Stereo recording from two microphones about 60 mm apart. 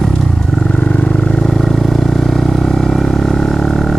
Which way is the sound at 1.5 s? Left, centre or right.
Centre.